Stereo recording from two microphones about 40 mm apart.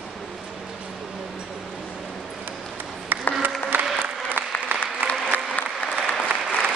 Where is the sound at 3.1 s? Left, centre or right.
Right.